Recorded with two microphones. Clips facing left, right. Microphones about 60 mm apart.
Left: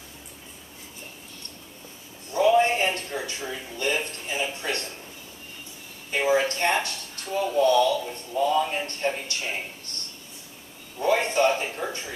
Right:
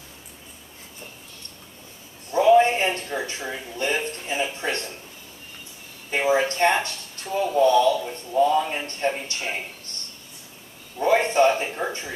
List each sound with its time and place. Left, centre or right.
2.4 s music: right
6.1 s speech: right
11.0 s a sound: right
11.5 s music: right